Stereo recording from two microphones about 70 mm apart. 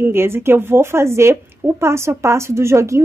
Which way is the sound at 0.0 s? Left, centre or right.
Right.